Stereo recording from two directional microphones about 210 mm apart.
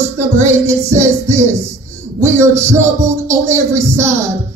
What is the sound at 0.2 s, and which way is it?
Speech, 15° right (ahead or behind).